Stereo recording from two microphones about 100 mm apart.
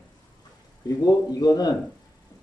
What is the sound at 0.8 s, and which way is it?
Speech, 40° left (ahead or behind).